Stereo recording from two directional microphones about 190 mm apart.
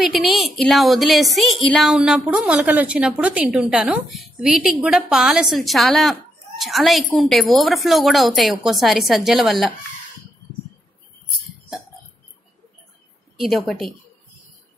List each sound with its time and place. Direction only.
0.0 s a woman's voice: centre (ahead or behind)
13.4 s a woman's voice: centre (ahead or behind)